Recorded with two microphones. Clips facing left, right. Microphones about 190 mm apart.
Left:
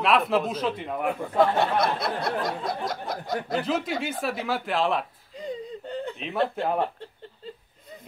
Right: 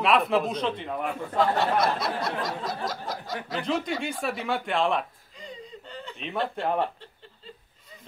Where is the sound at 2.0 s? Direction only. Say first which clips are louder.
Left 2 dB; 55° left (ahead or behind).